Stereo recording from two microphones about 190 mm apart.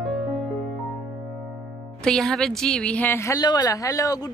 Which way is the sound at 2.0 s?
5° left (ahead or behind).